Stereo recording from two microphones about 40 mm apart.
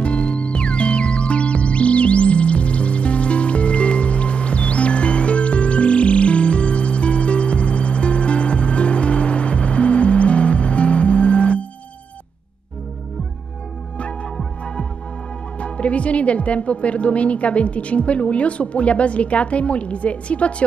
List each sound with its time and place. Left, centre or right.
0.0 s music: left
15.6 s speech: left